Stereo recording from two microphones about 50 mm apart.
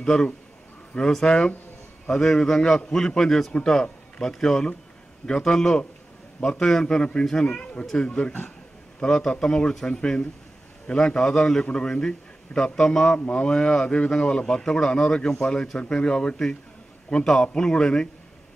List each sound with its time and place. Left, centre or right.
0.0 s a man's voice: centre